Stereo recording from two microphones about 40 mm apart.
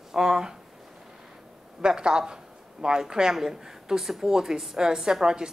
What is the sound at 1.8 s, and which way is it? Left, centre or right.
A woman's voice, right.